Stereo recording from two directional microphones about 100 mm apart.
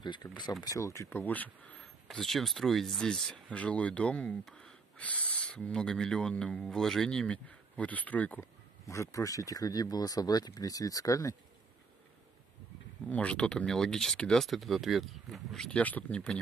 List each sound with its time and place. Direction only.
0.0 s speech: 50° left (ahead or behind)
0.7 s speech: 30° left (ahead or behind); by 1.8 s 15° left (ahead or behind)
2.0 s speech: centre (ahead or behind)
8.8 s speech: 30° left (ahead or behind)
13.1 s speech: 10° left (ahead or behind)